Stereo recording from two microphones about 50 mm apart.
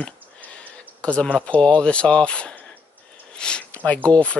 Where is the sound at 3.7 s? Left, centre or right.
Left.